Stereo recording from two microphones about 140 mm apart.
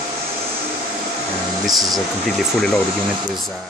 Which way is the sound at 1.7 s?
25° right (ahead or behind).